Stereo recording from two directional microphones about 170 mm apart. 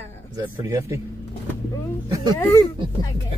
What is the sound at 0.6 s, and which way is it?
Speech, 20° right (ahead or behind).